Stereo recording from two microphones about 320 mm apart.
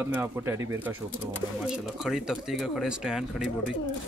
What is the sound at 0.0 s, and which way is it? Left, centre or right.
Speech, centre.